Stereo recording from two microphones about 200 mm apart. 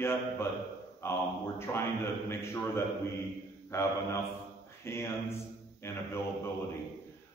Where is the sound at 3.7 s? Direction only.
15° left (ahead or behind).